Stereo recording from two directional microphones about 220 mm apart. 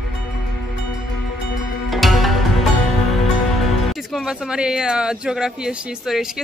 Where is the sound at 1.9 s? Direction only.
Centre (ahead or behind).